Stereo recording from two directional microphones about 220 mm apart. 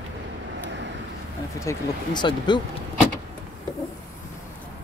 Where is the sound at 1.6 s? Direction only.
15° left (ahead or behind).